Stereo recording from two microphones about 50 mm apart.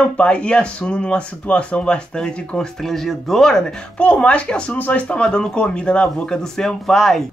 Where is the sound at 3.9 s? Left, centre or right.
Left.